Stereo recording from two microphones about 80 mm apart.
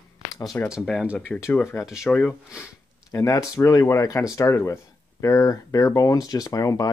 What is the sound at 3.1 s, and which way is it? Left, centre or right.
Speech, left.